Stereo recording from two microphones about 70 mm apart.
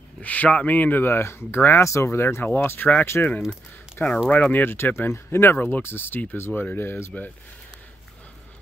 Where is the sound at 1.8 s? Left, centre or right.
Left.